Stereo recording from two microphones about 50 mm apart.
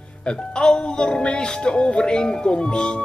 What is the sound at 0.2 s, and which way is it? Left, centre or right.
Speech, centre.